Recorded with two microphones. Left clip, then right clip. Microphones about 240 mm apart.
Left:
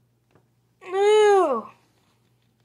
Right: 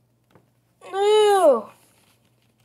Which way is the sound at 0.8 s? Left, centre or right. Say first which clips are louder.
Even; left.